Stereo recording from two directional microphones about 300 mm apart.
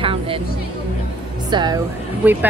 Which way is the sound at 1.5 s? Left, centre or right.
Centre.